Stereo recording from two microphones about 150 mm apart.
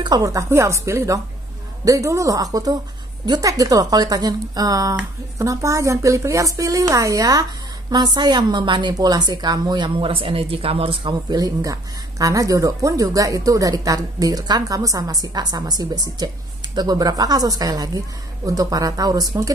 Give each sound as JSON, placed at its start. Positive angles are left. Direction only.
{"t": 0.0, "sound": "a woman's voice", "side_deg": -25}